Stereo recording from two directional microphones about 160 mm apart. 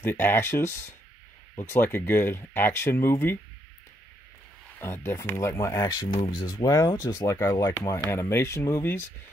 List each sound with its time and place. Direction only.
0.0 s speech: 15° left (ahead or behind)
4.7 s speech: 15° left (ahead or behind)